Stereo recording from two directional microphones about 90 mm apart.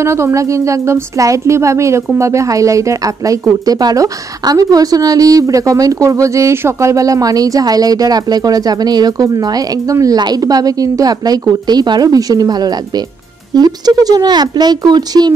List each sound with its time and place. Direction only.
0.0 s a woman's voice: 30° right (ahead or behind); by 15.3 s 50° right (ahead or behind)